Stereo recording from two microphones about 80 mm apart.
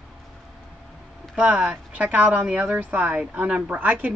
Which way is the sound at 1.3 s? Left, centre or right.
Centre.